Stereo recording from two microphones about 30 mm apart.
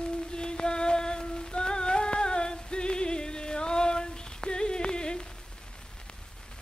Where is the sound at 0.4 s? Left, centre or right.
Left.